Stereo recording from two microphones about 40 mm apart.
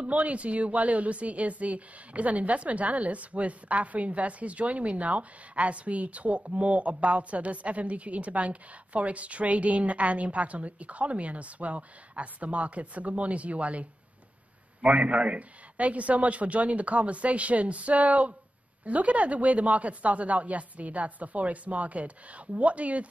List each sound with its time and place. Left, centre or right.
0.0 s a woman's voice: right
14.9 s a woman's voice: right